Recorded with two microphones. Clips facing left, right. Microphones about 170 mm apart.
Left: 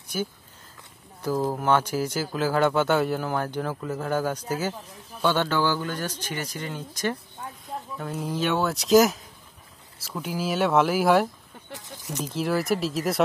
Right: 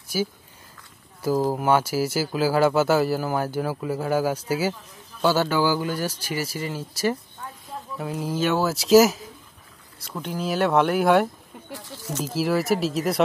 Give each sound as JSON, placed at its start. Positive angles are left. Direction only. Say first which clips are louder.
{"t": 0.1, "sound": "speech", "louder": "right 4 dB", "side_deg": -5}
{"t": 1.5, "sound": "a man's voice", "louder": "right 2 dB", "side_deg": -10}
{"t": 10.2, "sound": "speech", "louder": "right 1 dB", "side_deg": 5}
{"t": 11.7, "sound": "speech", "louder": "right 3 dB", "side_deg": 20}
{"t": 12.4, "sound": "speech", "louder": "right 3 dB", "side_deg": 0}